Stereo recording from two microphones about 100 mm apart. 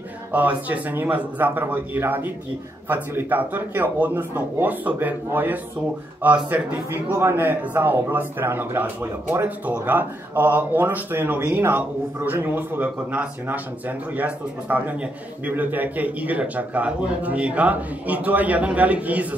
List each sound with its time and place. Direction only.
0.3 s a man's voice: 15° right (ahead or behind)